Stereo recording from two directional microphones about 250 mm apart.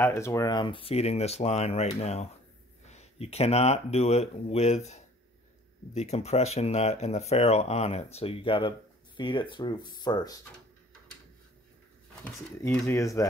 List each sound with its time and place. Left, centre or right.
0.0 s speech: centre
12.8 s speech: centre